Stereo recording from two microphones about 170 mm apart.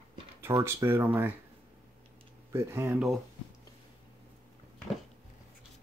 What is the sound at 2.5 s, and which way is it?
Speech, 15° right (ahead or behind).